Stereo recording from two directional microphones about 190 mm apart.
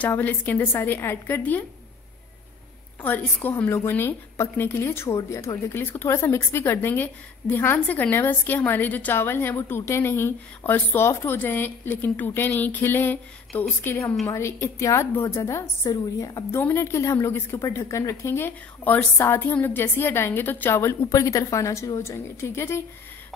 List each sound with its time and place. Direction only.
0.0 s speech: 10° left (ahead or behind)
3.0 s speech: 10° left (ahead or behind)